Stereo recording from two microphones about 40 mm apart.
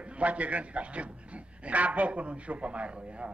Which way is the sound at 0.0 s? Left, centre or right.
Right.